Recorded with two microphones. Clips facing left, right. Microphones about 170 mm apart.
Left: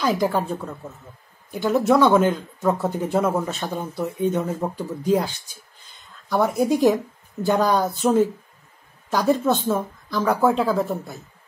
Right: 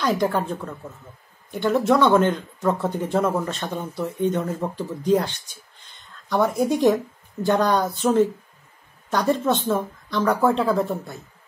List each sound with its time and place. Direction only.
0.0 s speech: 5° left (ahead or behind)